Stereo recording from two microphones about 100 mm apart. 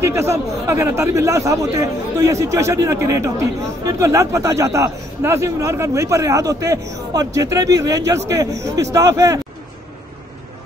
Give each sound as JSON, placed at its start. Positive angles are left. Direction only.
{"t": 0.0, "sound": "a man's voice", "side_deg": -30}